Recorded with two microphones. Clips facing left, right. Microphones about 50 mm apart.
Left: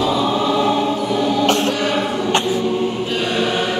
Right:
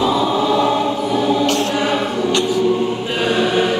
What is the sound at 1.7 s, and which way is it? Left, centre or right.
Chant, centre.